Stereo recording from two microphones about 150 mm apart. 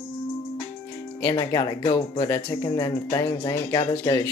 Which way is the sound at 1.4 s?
25° left (ahead or behind).